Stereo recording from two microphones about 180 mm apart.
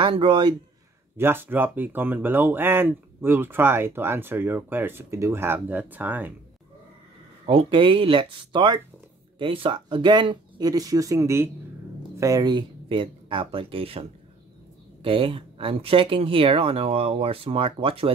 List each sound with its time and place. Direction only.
0.0 s speech: 30° right (ahead or behind)
1.1 s speech: 10° right (ahead or behind)
7.4 s speech: 30° right (ahead or behind)
15.0 s speech: 30° right (ahead or behind)